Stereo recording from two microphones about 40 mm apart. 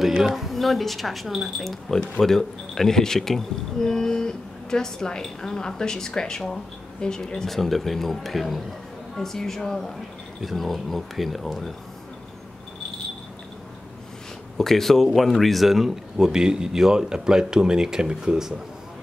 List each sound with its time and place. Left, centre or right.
0.0 s a sound: centre
0.3 s speech: centre
7.4 s speech: centre
14.6 s speech: centre